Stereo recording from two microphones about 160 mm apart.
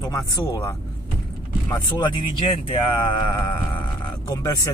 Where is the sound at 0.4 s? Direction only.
20° left (ahead or behind).